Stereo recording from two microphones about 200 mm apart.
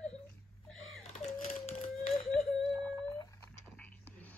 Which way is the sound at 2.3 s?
Centre (ahead or behind).